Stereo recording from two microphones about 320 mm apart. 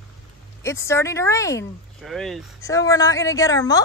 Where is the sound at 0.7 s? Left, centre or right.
Centre.